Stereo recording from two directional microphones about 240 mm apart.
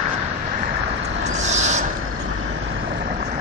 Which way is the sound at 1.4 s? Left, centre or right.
Right.